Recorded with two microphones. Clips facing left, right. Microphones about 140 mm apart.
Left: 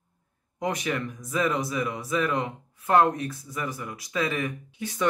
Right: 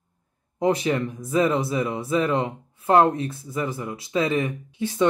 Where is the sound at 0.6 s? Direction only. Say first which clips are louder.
Right 7 dB; 30° right (ahead or behind).